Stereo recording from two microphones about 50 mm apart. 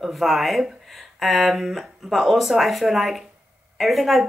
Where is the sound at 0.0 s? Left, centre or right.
Centre.